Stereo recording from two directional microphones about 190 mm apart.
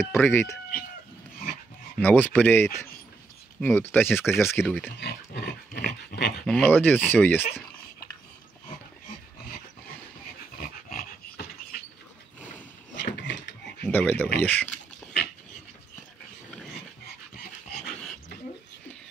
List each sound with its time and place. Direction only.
0.0 s speech: 10° left (ahead or behind)
2.0 s speech: 10° left (ahead or behind)
5.0 s dog: 60° left (ahead or behind)
6.4 s speech: 5° left (ahead or behind)
10.6 s dog: 50° left (ahead or behind)
13.0 s a sound: 70° left (ahead or behind)
13.8 s speech: 10° left (ahead or behind)